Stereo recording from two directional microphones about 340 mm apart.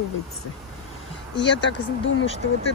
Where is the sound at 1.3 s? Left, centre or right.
Left.